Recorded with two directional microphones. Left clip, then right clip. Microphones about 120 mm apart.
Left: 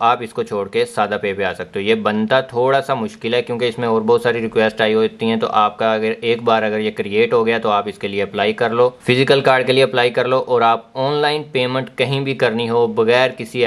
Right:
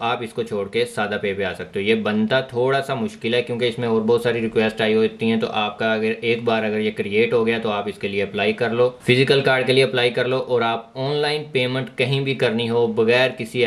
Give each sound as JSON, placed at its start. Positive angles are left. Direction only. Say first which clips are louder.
{"t": 0.0, "sound": "speech", "louder": "left 7 dB", "side_deg": 20}